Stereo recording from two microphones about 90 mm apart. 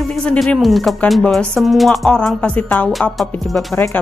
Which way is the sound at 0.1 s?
5° left (ahead or behind).